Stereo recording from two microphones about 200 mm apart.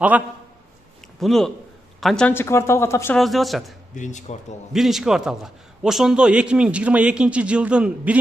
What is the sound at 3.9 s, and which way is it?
Speech, 35° left (ahead or behind).